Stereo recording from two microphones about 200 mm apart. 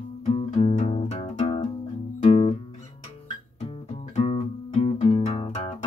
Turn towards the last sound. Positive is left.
turn(degrees=30)  # may be behind; listen again after turning